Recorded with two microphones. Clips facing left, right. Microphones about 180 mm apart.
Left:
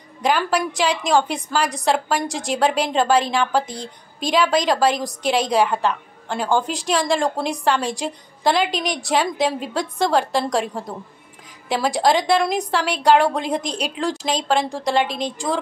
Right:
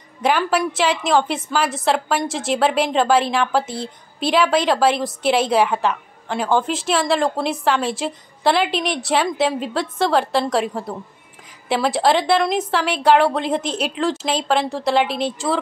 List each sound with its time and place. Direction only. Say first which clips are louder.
0.2 s a woman's voice: right 1 dB; 5° right (ahead or behind)